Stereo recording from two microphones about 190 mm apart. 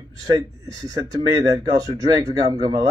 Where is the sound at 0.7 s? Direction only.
20° right (ahead or behind).